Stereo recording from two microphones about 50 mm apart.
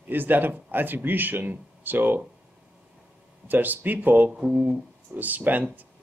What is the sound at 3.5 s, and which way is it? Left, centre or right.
Speech, right.